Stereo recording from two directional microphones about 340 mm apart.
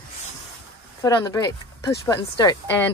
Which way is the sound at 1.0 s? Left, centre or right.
Centre.